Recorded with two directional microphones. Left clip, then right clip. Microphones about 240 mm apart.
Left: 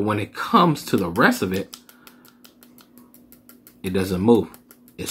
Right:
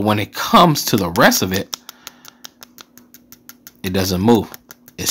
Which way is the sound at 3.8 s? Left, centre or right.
Right.